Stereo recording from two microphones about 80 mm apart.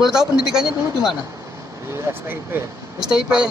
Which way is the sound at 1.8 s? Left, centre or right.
Right.